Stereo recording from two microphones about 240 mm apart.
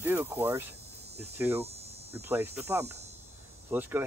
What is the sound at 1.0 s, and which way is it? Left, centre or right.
Hum, right.